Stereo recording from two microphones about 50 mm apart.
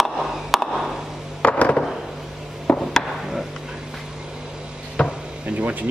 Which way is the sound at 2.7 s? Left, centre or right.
Left.